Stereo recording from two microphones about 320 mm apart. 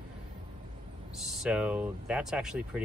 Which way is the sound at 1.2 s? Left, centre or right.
Centre.